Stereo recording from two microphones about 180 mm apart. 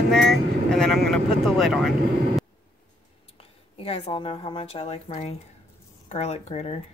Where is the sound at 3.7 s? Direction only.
30° left (ahead or behind).